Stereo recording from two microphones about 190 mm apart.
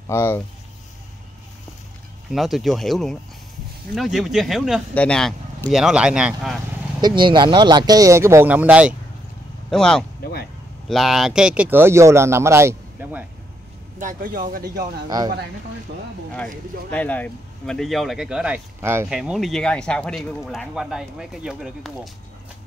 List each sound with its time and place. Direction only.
0.1 s speech: 10° left (ahead or behind)
2.3 s speech: centre (ahead or behind)
7.0 s speech: 25° right (ahead or behind)
13.9 s speech: 45° right (ahead or behind)
15.0 s speech: 20° right (ahead or behind)
16.3 s speech: 5° left (ahead or behind); by 19.1 s 15° right (ahead or behind)
19.1 s speech: centre (ahead or behind)